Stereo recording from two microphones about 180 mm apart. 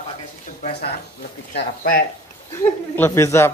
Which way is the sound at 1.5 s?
55° left (ahead or behind).